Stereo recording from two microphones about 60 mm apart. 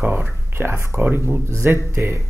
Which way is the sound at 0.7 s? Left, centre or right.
Right.